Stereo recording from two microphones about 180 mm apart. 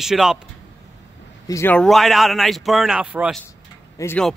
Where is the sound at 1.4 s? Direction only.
15° left (ahead or behind).